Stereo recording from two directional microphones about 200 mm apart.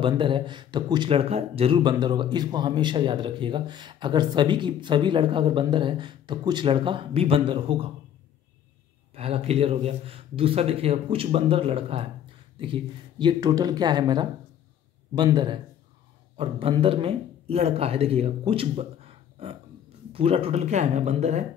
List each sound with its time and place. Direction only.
0.0 s speech: 25° right (ahead or behind)
9.1 s speech: 30° right (ahead or behind)